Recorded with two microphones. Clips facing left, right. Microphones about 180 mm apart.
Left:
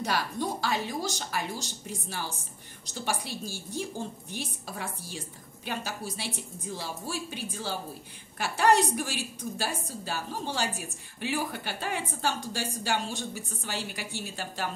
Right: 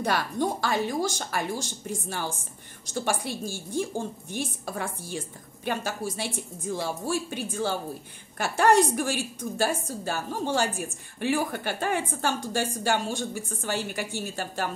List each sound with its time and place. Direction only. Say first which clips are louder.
0.0 s a woman's voice: right 4 dB; 55° right (ahead or behind)